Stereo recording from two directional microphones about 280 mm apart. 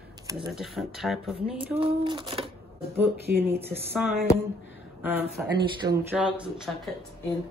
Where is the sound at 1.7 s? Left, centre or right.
Centre.